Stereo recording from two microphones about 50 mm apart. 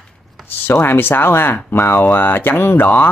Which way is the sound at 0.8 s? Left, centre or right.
Left.